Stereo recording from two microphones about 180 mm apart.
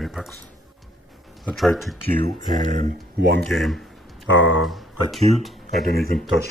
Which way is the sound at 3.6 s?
Centre (ahead or behind).